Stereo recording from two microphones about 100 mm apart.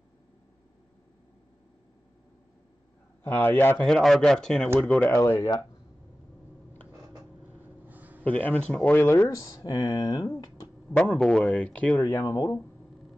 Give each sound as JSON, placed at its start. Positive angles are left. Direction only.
{"t": 3.3, "sound": "speech", "side_deg": 20}
{"t": 3.8, "sound": "speech", "side_deg": 5}
{"t": 5.1, "sound": "speech", "side_deg": 30}
{"t": 7.8, "sound": "a sound", "side_deg": -15}
{"t": 8.2, "sound": "speech", "side_deg": 15}
{"t": 9.0, "sound": "speech", "side_deg": 25}
{"t": 9.3, "sound": "speech", "side_deg": 35}
{"t": 11.0, "sound": "speech", "side_deg": 10}
{"t": 12.0, "sound": "speech", "side_deg": 25}